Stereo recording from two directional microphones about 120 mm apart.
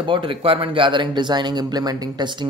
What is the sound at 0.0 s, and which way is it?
Speech, 45° right (ahead or behind).